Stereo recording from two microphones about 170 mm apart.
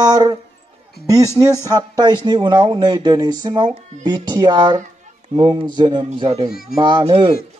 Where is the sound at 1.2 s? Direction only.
15° left (ahead or behind).